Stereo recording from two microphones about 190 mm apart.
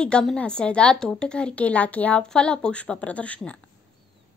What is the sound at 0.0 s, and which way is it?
A woman's voice, 5° left (ahead or behind).